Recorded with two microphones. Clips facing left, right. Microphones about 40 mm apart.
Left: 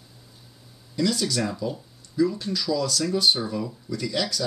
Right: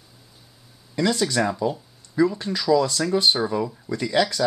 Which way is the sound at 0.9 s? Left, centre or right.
Right.